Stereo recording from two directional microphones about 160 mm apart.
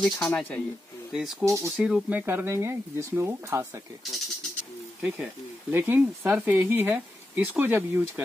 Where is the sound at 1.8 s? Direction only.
5° right (ahead or behind).